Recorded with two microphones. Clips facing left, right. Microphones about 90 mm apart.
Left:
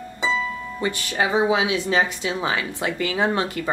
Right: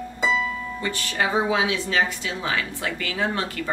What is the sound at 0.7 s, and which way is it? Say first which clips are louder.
Speech: left 4 dB; 20° left (ahead or behind).